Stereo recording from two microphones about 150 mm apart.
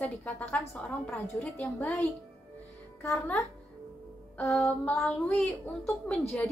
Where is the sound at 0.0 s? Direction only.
10° left (ahead or behind).